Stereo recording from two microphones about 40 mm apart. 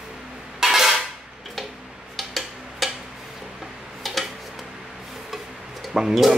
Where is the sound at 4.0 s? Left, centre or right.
Centre.